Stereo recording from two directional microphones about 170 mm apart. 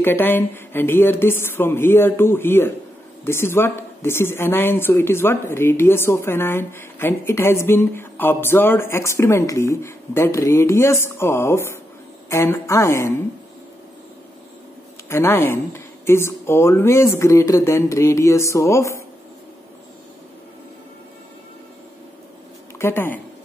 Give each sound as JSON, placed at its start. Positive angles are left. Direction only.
{"t": 0.0, "sound": "speech", "side_deg": 10}
{"t": 15.0, "sound": "speech", "side_deg": 15}
{"t": 22.8, "sound": "speech", "side_deg": 15}